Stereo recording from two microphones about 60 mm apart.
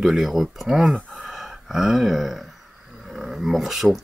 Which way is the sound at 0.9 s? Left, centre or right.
Centre.